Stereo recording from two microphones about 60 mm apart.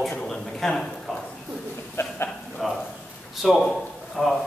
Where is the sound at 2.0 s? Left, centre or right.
Left.